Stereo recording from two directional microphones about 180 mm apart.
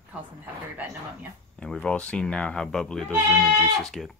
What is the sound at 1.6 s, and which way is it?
Speech, 5° left (ahead or behind).